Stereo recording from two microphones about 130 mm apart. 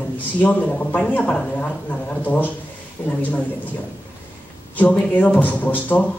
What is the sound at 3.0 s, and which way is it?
Speech, 15° left (ahead or behind).